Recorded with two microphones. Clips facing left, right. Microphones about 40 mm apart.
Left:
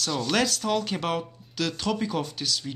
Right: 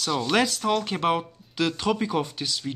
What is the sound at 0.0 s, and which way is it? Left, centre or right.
Speech, centre.